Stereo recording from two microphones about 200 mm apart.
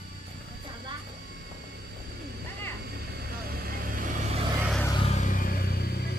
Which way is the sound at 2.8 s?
50° right (ahead or behind).